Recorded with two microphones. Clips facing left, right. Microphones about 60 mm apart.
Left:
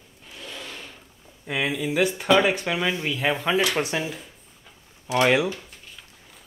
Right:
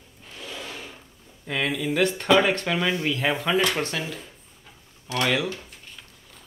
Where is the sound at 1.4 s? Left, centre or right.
Centre.